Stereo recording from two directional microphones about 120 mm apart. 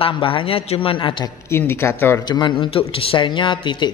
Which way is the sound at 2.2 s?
40° left (ahead or behind).